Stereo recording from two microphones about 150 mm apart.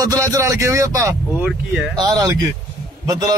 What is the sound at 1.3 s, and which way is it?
Speech, 5° right (ahead or behind).